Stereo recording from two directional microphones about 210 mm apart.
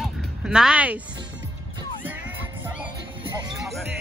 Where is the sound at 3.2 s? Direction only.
20° right (ahead or behind).